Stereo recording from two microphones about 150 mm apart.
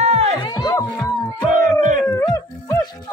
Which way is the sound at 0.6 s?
30° left (ahead or behind).